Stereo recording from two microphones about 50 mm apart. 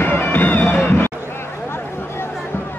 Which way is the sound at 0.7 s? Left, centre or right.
Left.